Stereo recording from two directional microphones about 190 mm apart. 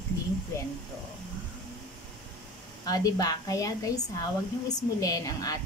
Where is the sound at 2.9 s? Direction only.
20° left (ahead or behind).